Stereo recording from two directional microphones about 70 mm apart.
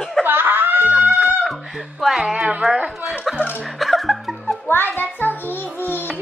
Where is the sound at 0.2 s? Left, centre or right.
Right.